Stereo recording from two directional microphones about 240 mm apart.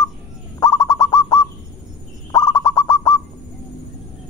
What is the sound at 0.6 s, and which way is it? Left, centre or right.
Bird, centre.